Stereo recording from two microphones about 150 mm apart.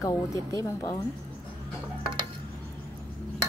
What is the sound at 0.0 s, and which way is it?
A woman's voice, 20° left (ahead or behind).